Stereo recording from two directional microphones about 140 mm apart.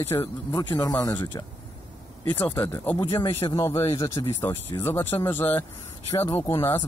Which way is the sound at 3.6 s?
20° left (ahead or behind).